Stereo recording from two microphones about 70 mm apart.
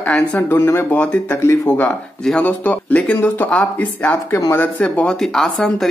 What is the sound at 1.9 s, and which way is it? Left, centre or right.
Speech, centre.